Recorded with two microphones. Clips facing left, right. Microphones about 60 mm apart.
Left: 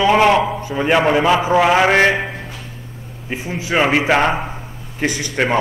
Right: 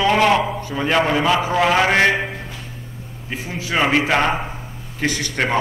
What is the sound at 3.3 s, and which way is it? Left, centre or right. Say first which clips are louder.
A man's voice: left 3 dB; left.